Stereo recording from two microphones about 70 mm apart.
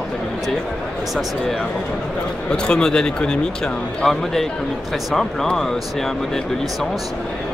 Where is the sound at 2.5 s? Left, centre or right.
Centre.